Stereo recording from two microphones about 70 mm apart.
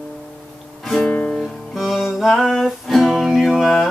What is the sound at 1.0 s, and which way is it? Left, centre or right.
Music, centre.